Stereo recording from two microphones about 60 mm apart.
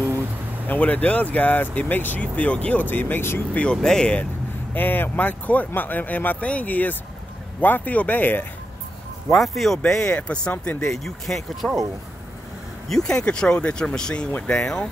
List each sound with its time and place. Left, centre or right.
0.7 s speech: left
3.7 s speech: centre
4.7 s speech: left
9.3 s speech: centre
10.9 s speech: centre
12.8 s speech: centre